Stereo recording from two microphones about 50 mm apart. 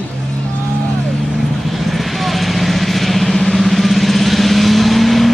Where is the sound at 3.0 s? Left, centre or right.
Centre.